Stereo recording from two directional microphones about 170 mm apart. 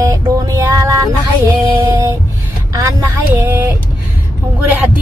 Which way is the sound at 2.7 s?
20° right (ahead or behind).